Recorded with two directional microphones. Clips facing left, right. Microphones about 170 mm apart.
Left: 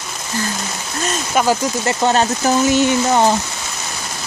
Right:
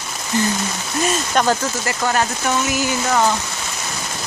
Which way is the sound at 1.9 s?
25° left (ahead or behind).